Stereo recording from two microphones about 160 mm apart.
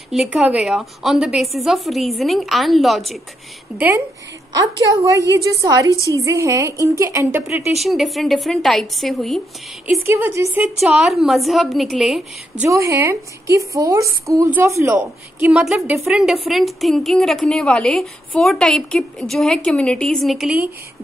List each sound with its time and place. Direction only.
0.1 s a woman's voice: 5° right (ahead or behind)
3.7 s a woman's voice: 10° right (ahead or behind)
7.7 s a woman's voice: centre (ahead or behind)
10.0 s a woman's voice: 15° right (ahead or behind)
10.6 s a woman's voice: centre (ahead or behind)
12.6 s a woman's voice: 20° right (ahead or behind)
15.4 s a woman's voice: 5° right (ahead or behind)